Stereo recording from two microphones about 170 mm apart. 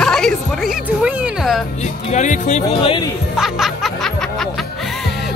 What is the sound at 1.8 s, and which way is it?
Music, 45° left (ahead or behind).